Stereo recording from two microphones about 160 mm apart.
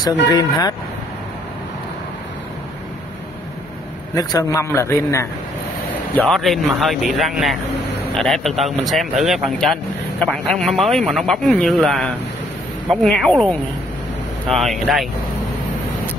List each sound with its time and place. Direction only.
0.0 s speech: 25° left (ahead or behind)
4.1 s a man's voice: 20° left (ahead or behind)
6.2 s speech: centre (ahead or behind)